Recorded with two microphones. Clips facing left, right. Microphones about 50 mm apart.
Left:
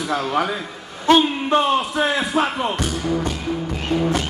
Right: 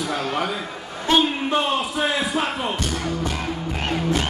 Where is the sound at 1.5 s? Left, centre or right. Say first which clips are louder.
Left 7 dB; centre.